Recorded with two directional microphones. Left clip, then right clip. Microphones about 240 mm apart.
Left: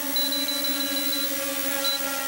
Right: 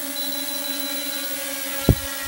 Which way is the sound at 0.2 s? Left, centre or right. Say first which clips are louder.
Left 4 dB; centre.